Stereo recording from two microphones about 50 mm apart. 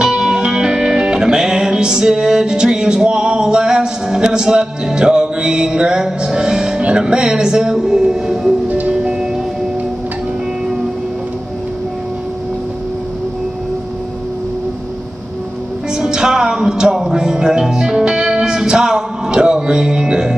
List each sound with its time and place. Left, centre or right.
0.0 s music: centre
6.8 s speech: right
8.6 s music: right
8.9 s music: centre
15.9 s music: centre